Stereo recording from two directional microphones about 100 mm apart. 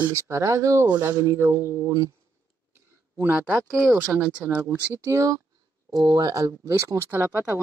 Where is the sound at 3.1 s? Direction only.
20° right (ahead or behind).